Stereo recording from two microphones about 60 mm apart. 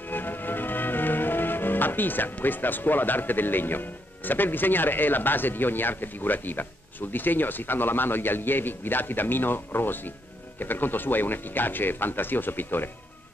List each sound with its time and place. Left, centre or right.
0.1 s music: left
10.6 s speech: left